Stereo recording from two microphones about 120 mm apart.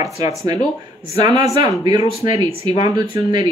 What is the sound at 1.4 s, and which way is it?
Speech, 30° right (ahead or behind).